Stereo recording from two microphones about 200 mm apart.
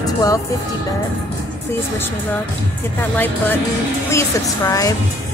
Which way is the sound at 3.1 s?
10° left (ahead or behind).